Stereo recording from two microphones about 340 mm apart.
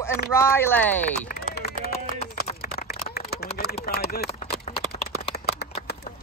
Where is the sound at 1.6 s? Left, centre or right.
Left.